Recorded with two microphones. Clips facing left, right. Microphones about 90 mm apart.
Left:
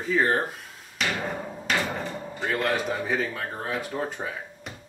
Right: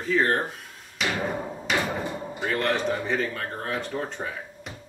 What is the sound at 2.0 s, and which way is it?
Drawer open or close, 15° right (ahead or behind).